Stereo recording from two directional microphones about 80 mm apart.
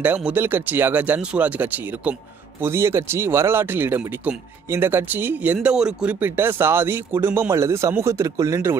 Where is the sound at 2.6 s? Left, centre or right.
Right; by 6.1 s centre.